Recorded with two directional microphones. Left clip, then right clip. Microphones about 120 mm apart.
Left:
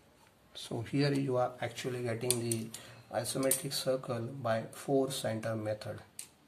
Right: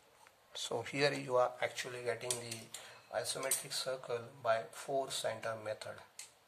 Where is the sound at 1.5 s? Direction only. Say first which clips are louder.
Right 1 dB; 15° right (ahead or behind).